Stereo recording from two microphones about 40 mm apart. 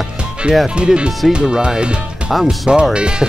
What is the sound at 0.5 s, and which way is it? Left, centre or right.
Speech, right.